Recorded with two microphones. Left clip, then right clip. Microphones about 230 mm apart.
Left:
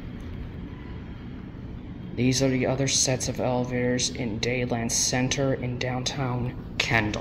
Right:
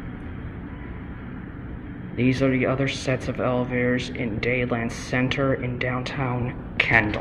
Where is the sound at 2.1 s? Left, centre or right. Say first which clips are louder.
Right 2 dB; centre.